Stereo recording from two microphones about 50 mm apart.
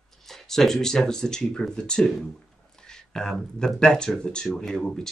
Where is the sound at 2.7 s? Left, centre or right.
Centre.